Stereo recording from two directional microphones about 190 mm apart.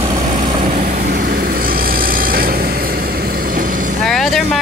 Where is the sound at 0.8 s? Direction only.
50° right (ahead or behind).